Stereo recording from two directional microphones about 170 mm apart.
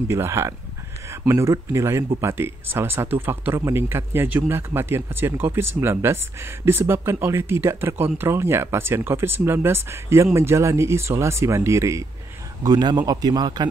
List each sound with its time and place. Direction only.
0.1 s a man's voice: 15° right (ahead or behind)